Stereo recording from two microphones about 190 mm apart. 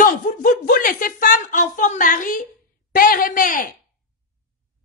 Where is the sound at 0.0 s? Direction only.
45° left (ahead or behind).